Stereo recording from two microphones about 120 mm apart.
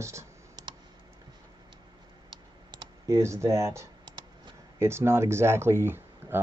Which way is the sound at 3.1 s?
25° right (ahead or behind).